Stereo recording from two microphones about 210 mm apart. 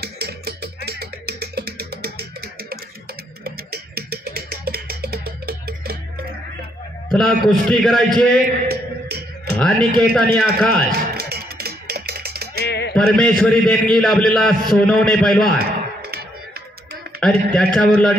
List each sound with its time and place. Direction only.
0.0 s music: 50° right (ahead or behind)
7.1 s a man's voice: centre (ahead or behind)
8.4 s music: 50° right (ahead or behind)
9.6 s a man's voice: 5° left (ahead or behind)
10.9 s music: 50° right (ahead or behind)
12.6 s typing: 50° left (ahead or behind)
12.9 s a man's voice: 5° left (ahead or behind)
16.0 s music: 50° right (ahead or behind)
17.2 s a man's voice: 5° left (ahead or behind)